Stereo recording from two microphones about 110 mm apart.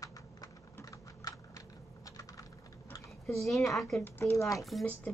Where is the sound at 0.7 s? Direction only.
30° left (ahead or behind).